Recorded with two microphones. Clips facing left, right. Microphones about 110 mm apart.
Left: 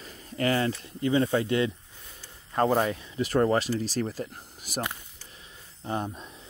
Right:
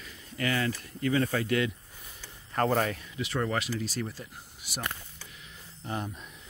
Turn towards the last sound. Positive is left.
turn(degrees=30)  # may be behind; listen again after turning